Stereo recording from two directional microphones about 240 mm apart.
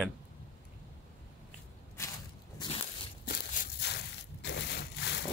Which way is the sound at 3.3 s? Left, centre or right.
Left.